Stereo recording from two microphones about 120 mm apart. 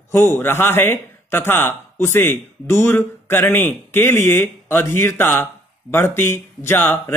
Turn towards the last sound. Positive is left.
turn(degrees=20)  # may be behind; listen again after turning